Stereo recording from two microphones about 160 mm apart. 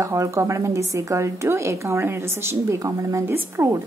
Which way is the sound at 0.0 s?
20° right (ahead or behind).